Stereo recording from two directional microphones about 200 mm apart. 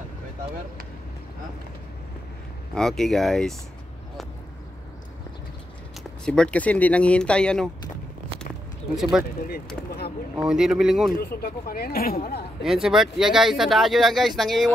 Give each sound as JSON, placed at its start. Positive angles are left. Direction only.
{"t": 2.7, "sound": "speech", "side_deg": 0}
{"t": 6.2, "sound": "speech", "side_deg": 5}
{"t": 10.3, "sound": "speech", "side_deg": -5}
{"t": 11.1, "sound": "speech", "side_deg": 50}
{"t": 12.6, "sound": "speech", "side_deg": 0}